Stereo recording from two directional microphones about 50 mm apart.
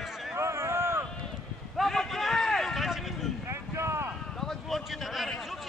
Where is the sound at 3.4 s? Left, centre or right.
Right.